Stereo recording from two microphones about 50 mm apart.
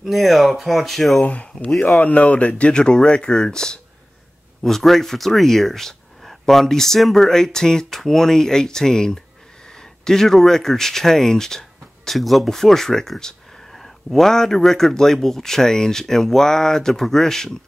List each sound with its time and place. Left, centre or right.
0.0 s speech: centre
1.2 s speech: left; by 17.6 s centre